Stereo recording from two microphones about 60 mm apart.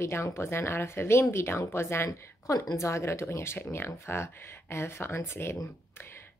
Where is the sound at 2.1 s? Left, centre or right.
Left.